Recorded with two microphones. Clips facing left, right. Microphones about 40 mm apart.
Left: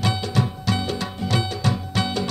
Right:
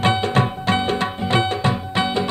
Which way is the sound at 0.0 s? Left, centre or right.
Right.